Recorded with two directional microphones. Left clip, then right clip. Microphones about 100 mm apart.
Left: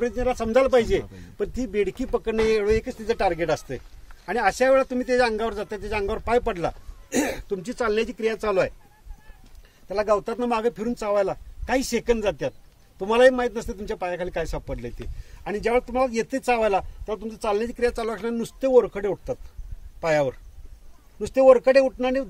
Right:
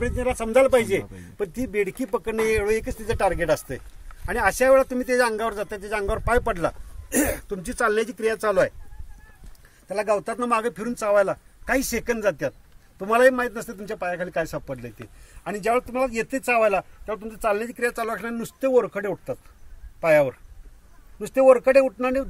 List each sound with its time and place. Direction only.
0.1 s speech: 20° left (ahead or behind)
9.8 s speech: 20° left (ahead or behind)
12.1 s speech: 60° left (ahead or behind)
13.0 s speech: 25° left (ahead or behind)